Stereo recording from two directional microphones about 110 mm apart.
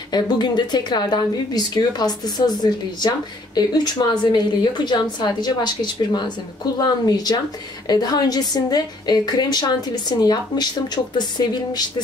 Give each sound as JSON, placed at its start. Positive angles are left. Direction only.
{"t": 0.1, "sound": "speech", "side_deg": 40}